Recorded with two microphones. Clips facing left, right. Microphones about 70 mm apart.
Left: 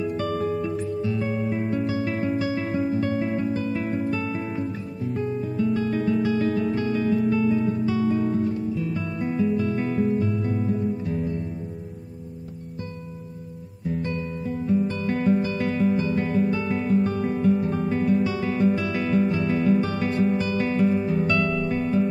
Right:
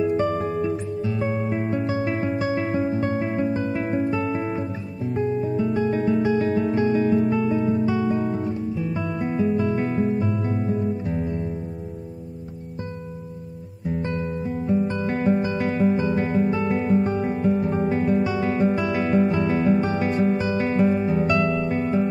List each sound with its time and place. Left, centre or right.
0.6 s music: centre
6.9 s guitar: right
10.3 s music: right
14.0 s music: right
17.6 s music: right